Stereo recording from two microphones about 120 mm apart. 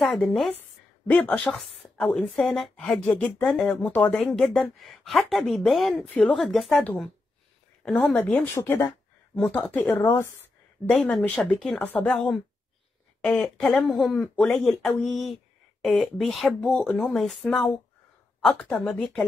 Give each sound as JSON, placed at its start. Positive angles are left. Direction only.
{"t": 0.0, "sound": "a woman's voice", "side_deg": 0}
{"t": 0.5, "sound": "a woman's voice", "side_deg": 15}
{"t": 4.2, "sound": "a woman's voice", "side_deg": 5}
{"t": 6.8, "sound": "a woman's voice", "side_deg": 15}
{"t": 10.9, "sound": "a woman's voice", "side_deg": 10}